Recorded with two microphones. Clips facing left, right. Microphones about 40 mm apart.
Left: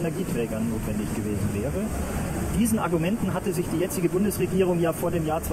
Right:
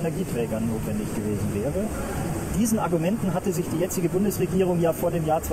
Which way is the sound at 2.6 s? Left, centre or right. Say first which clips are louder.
Right 1 dB; centre.